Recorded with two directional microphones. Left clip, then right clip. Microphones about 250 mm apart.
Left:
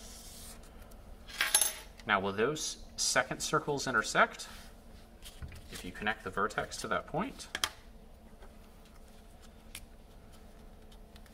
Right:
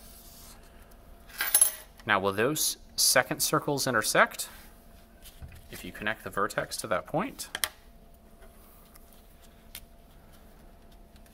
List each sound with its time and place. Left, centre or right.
2.0 s speech: right
5.9 s speech: right